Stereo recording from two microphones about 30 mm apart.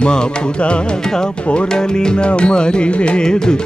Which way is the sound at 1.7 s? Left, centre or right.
Left.